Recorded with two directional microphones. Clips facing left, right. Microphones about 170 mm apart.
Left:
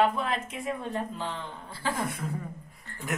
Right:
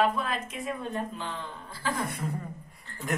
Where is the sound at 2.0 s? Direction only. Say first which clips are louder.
Even; centre (ahead or behind).